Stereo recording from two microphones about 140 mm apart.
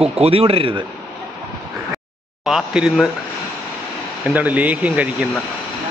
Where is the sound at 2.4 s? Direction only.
5° right (ahead or behind).